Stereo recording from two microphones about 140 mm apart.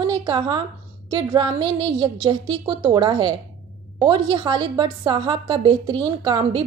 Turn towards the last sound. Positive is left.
turn(degrees=-30)  # may be behind; listen again after turning